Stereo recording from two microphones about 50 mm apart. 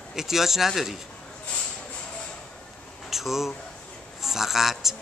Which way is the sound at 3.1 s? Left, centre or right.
Centre.